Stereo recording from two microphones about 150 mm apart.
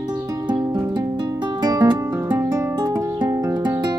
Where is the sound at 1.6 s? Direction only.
25° right (ahead or behind).